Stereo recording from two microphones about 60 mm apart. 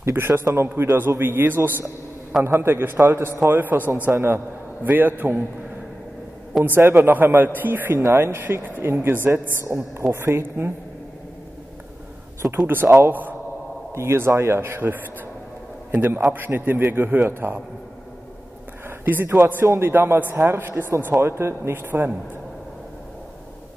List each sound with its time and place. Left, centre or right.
0.0 s a man's voice: right
6.5 s a man's voice: centre
6.9 s a man's voice: right
10.1 s speech: right
12.4 s a man's voice: centre
12.9 s a man's voice: right
13.9 s a man's voice: right
18.9 s a man's voice: right